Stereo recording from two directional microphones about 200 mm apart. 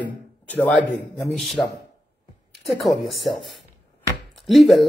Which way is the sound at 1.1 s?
Centre (ahead or behind).